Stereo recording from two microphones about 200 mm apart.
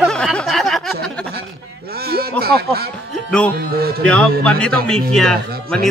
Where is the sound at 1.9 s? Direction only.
50° right (ahead or behind).